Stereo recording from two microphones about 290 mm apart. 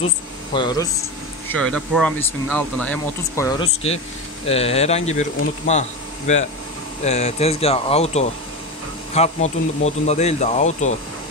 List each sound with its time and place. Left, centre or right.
0.0 s speech: centre
1.5 s speech: centre
4.5 s speech: left